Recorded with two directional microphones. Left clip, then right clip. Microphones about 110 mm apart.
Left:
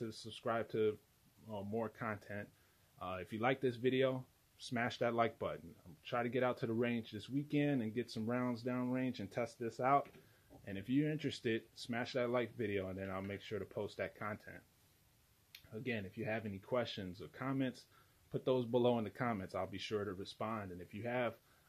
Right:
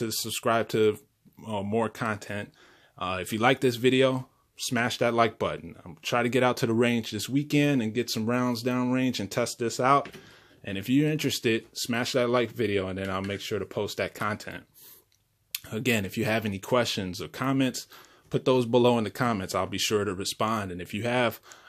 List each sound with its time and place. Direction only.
0.0 s speech: 15° right (ahead or behind)
1.9 s speech: 10° right (ahead or behind)
14.1 s speech: 20° right (ahead or behind)
15.5 s speech: 40° right (ahead or behind); by 21.4 s 25° right (ahead or behind)